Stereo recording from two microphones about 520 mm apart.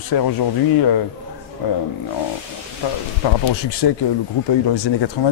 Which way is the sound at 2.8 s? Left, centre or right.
Left.